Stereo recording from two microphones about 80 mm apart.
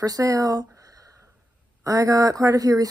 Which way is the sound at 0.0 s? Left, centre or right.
Right.